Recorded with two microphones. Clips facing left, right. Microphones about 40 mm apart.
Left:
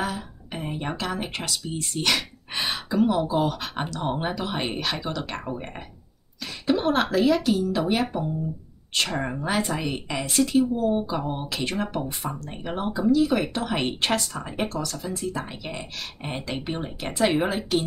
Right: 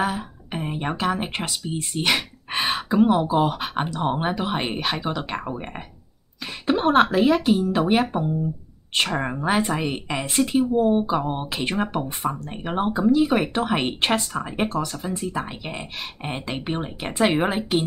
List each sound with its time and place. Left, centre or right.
0.0 s speech: right
6.7 s speech: right